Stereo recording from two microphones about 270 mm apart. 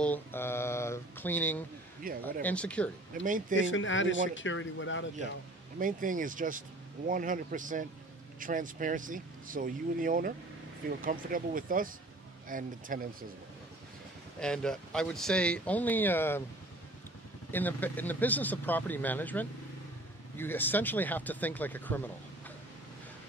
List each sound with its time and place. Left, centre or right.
0.0 s speech: centre
2.0 s speech: right
2.4 s speech: centre
3.3 s speech: right
3.5 s speech: left
5.8 s speech: right
14.4 s speech: centre
17.5 s speech: centre